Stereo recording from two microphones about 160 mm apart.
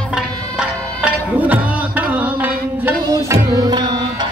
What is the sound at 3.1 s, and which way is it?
Tabla, 25° right (ahead or behind).